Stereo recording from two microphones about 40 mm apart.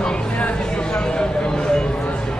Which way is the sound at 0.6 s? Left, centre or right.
Left.